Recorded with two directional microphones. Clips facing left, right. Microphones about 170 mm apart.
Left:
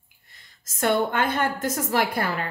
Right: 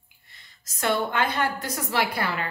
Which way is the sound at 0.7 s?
50° left (ahead or behind).